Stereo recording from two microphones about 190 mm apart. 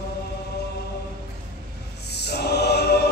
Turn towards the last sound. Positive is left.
turn(degrees=60)  # may be behind; listen again after turning